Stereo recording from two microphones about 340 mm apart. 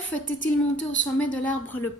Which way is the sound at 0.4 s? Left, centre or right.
Left.